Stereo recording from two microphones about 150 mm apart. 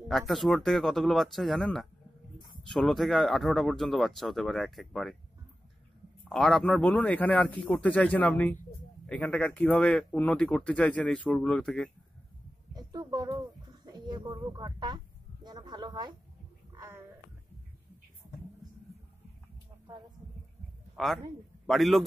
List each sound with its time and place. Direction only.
0.3 s speech: centre (ahead or behind)
6.2 s speech: centre (ahead or behind)
12.7 s a sound: 25° right (ahead or behind)
14.4 s speech: 30° right (ahead or behind)
15.4 s a sound: 30° right (ahead or behind)
20.9 s a man's voice: centre (ahead or behind)